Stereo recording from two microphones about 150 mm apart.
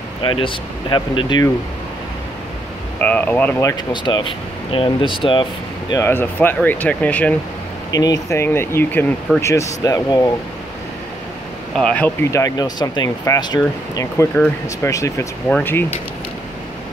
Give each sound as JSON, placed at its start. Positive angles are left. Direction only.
{"t": 0.2, "sound": "speech", "side_deg": 35}
{"t": 3.0, "sound": "speech", "side_deg": 10}
{"t": 3.9, "sound": "speech", "side_deg": 30}
{"t": 5.9, "sound": "speech", "side_deg": 15}
{"t": 7.9, "sound": "speech", "side_deg": 25}
{"t": 11.7, "sound": "speech", "side_deg": 10}
{"t": 12.3, "sound": "speech", "side_deg": 25}
{"t": 14.3, "sound": "speech", "side_deg": 10}
{"t": 14.9, "sound": "speech", "side_deg": 20}